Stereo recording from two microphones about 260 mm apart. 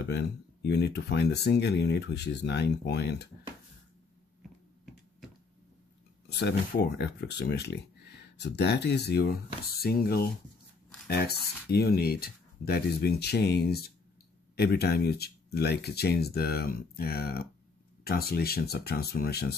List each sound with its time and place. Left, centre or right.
0.0 s speech: left
6.2 s speech: left